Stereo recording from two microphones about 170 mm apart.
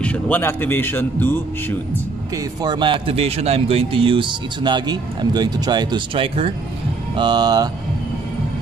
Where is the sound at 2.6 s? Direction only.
25° right (ahead or behind).